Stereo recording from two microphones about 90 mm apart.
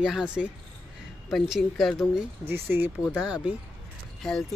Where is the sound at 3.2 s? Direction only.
10° right (ahead or behind).